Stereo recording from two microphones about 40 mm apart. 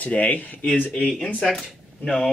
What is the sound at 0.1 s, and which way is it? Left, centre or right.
Speech, left.